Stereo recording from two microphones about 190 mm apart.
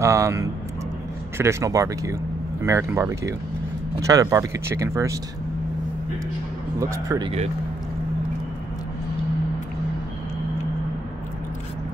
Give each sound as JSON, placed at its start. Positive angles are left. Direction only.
{"t": 0.0, "sound": "speech", "side_deg": -15}
{"t": 6.8, "sound": "speech", "side_deg": -15}